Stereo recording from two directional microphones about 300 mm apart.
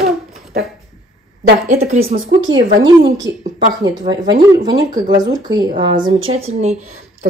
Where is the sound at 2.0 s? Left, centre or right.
Right.